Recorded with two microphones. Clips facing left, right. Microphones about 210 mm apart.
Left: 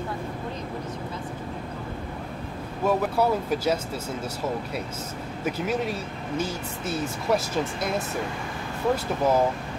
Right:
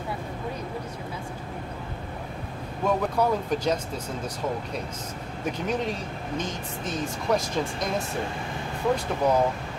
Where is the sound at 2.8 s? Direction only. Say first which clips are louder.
Left 1 dB; 5° left (ahead or behind).